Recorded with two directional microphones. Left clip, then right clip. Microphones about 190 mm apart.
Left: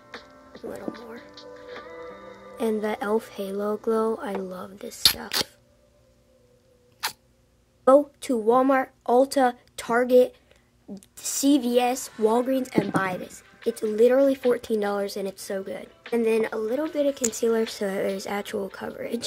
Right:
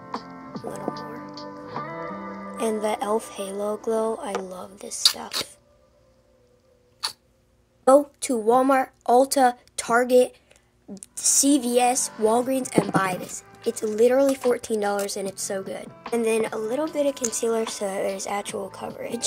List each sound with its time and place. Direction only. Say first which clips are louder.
0.3 s music: right 8 dB; 45° right (ahead or behind)
0.9 s music: right 6 dB; 5° left (ahead or behind)
2.5 s speech: right 1 dB; 25° left (ahead or behind)
7.8 s a woman's voice: right 1 dB; 15° left (ahead or behind)